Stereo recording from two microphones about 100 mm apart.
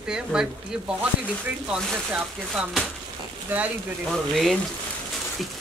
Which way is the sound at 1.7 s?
10° right (ahead or behind).